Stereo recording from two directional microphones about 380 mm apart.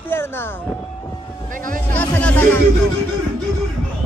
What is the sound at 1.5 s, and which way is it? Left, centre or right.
Speech, right.